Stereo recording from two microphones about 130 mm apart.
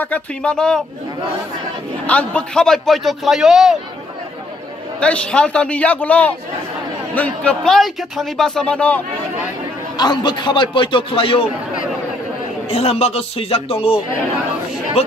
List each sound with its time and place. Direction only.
0.0 s a man's voice: 10° left (ahead or behind)
2.0 s a man's voice: 10° left (ahead or behind)
5.0 s a man's voice: 10° left (ahead or behind)
9.9 s a man's voice: 35° left (ahead or behind)
12.6 s a man's voice: 50° left (ahead or behind)
15.0 s a man's voice: 50° left (ahead or behind)